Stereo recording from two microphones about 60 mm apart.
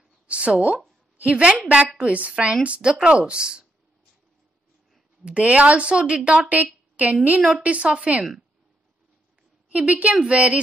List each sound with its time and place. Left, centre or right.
0.3 s a woman's voice: centre
5.2 s a woman's voice: right
9.7 s a woman's voice: right